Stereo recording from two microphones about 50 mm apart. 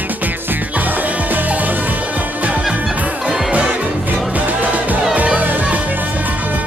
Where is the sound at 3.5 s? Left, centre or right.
Right.